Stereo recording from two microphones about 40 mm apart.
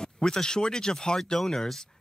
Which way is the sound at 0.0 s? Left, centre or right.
Centre.